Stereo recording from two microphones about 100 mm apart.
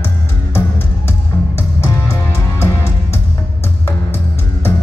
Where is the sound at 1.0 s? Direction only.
25° left (ahead or behind).